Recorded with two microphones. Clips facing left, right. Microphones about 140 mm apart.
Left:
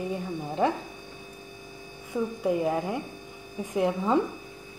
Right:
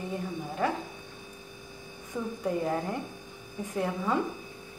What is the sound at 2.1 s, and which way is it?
Speech, 10° left (ahead or behind).